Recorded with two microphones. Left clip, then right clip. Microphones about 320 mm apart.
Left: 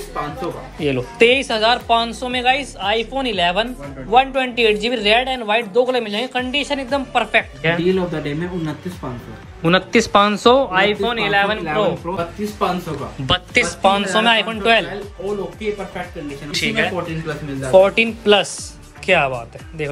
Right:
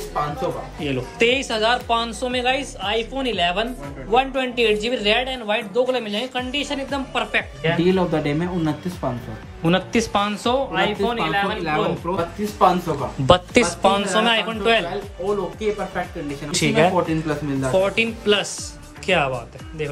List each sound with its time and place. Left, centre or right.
0.7 s speech: centre
7.8 s speech: centre
9.6 s speech: centre
16.5 s speech: centre
17.7 s speech: centre